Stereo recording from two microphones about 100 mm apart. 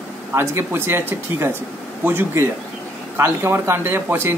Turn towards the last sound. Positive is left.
turn(degrees=-25)  # may be behind; listen again after turning